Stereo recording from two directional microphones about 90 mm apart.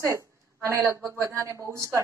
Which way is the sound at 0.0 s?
35° right (ahead or behind).